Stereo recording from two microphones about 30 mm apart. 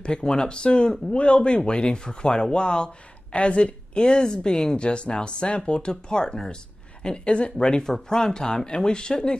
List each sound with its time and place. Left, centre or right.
0.0 s a woman's voice: left
7.8 s speech: centre